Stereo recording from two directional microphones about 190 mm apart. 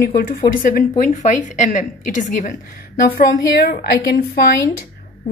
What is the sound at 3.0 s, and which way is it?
A woman's voice, 55° left (ahead or behind).